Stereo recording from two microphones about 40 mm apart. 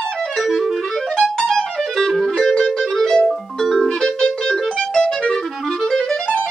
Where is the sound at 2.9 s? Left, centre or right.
Centre.